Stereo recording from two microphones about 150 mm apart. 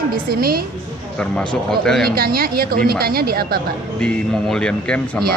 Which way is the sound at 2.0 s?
90° right.